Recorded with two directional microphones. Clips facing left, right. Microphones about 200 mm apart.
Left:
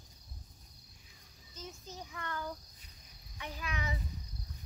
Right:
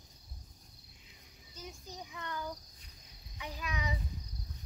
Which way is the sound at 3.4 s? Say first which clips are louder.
Right 1 dB; 15° right (ahead or behind).